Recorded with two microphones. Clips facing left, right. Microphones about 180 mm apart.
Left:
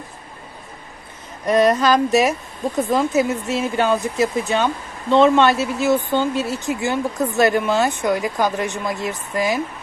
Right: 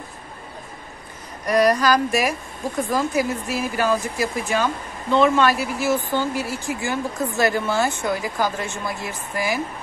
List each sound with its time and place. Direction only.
1.4 s speech: 25° left (ahead or behind)